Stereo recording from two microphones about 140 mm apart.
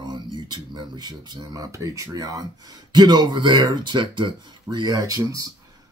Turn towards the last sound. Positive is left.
turn(degrees=-25)  # may be behind; listen again after turning